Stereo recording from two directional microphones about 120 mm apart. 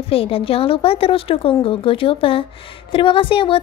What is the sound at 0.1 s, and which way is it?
A woman's voice, 50° left (ahead or behind).